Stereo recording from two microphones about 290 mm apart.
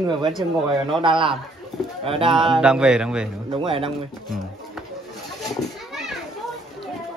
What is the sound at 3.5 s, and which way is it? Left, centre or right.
Speech, centre.